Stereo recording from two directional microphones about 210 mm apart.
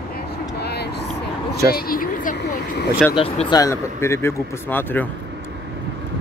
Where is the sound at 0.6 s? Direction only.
50° left (ahead or behind).